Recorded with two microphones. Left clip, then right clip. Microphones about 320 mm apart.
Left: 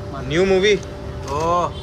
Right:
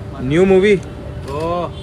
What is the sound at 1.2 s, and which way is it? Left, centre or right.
Speech, centre.